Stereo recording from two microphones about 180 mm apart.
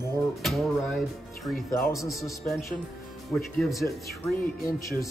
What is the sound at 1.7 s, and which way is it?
Speech, 15° left (ahead or behind).